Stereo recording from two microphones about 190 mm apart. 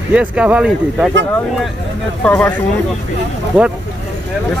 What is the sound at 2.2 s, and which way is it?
Speech, 5° left (ahead or behind).